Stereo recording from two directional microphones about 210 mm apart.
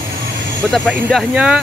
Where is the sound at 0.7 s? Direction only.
Centre (ahead or behind).